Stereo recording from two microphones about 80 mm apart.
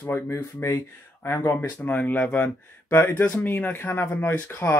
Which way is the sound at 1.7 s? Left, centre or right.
Centre.